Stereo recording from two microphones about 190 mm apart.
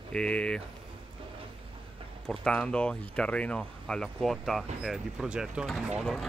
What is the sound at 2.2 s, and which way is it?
Speech, 5° left (ahead or behind).